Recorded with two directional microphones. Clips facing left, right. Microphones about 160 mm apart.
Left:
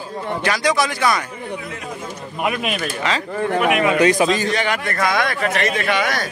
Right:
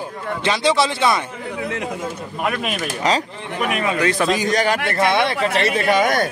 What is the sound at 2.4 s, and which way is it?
Speech, 5° left (ahead or behind).